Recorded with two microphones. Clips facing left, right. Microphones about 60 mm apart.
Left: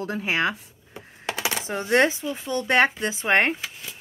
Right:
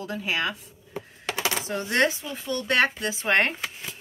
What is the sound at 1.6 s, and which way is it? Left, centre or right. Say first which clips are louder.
Speech: left 4 dB; left.